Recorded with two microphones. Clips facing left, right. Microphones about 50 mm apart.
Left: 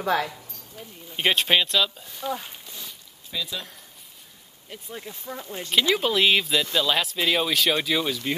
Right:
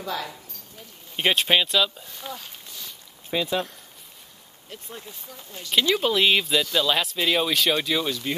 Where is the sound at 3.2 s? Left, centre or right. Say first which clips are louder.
Right 7 dB; right.